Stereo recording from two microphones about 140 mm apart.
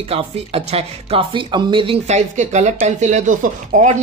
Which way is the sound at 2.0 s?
55° right (ahead or behind).